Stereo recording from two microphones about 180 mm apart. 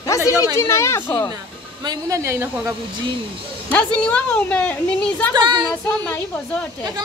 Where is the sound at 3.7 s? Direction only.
5° left (ahead or behind).